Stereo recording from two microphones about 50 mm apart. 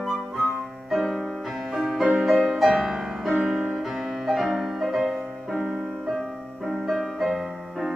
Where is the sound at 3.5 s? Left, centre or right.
Centre.